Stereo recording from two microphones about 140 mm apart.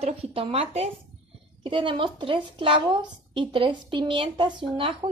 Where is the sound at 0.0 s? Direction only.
45° right (ahead or behind).